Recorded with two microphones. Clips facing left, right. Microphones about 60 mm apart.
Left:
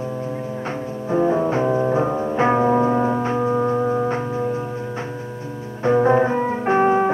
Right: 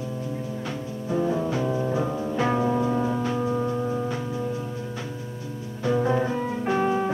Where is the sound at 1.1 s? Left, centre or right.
Left.